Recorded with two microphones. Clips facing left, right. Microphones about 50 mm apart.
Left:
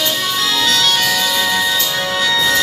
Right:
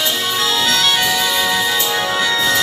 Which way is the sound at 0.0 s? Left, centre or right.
Centre.